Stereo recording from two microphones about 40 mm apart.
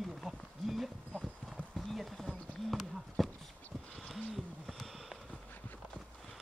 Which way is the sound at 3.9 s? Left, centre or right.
Centre.